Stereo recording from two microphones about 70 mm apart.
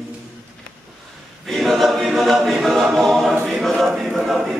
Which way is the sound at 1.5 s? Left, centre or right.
Centre.